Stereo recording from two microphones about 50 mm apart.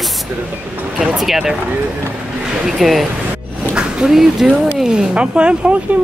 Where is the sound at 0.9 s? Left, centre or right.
Centre.